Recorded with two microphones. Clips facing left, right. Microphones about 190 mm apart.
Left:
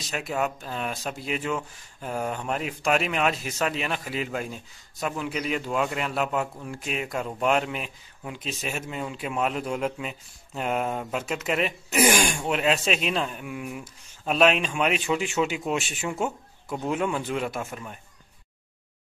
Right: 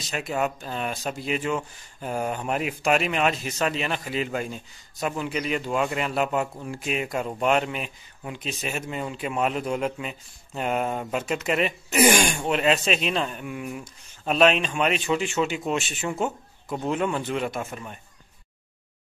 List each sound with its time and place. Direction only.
0.1 s speech: centre (ahead or behind)